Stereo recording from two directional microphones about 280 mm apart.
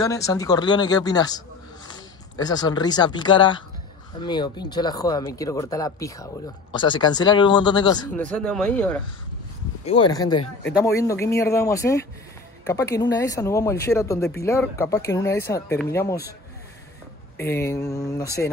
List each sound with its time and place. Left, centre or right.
0.0 s speech: centre
8.3 s speech: centre
9.8 s speech: centre
17.4 s speech: centre